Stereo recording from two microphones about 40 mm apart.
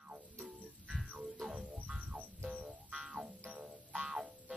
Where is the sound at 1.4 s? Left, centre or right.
Right.